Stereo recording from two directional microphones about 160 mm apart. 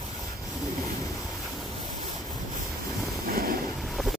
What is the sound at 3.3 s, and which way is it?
Vehicle, 65° right (ahead or behind).